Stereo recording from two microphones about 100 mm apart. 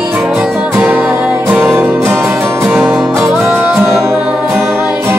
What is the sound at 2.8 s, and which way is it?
Music, centre (ahead or behind).